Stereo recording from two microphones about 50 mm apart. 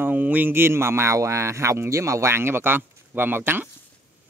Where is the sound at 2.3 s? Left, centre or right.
Right.